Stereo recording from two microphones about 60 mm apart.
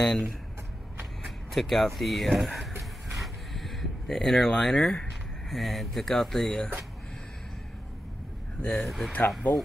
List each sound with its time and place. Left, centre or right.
0.0 s speech: centre
3.2 s a sound: centre
5.5 s speech: centre
8.7 s speech: centre
9.5 s speech: left